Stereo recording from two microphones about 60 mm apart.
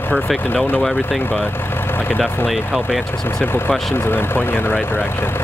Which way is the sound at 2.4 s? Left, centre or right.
Centre.